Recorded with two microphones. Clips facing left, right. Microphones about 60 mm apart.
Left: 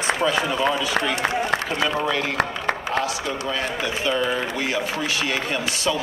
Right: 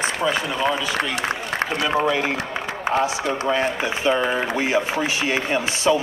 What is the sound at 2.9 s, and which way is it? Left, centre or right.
Speech, right.